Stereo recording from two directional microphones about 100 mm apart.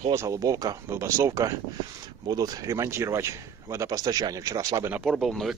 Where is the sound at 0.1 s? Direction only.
30° right (ahead or behind).